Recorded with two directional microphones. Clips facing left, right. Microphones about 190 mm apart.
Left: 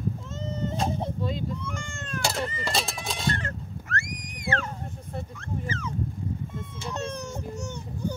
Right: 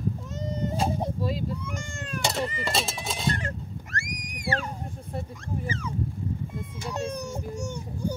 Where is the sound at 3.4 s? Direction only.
15° right (ahead or behind).